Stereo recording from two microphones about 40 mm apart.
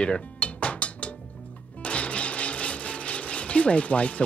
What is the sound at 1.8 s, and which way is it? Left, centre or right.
Speech, left.